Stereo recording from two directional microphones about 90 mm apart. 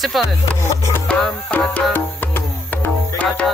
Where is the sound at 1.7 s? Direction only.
20° left (ahead or behind).